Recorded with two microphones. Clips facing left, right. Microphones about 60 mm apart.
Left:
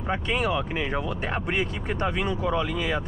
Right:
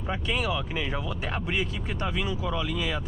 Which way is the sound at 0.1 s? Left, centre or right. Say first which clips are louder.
Left 3 dB; left.